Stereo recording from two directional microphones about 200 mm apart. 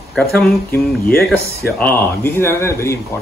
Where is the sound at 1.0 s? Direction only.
50° left (ahead or behind).